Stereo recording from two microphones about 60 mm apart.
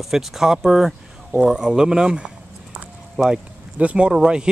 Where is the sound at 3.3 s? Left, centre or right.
Centre.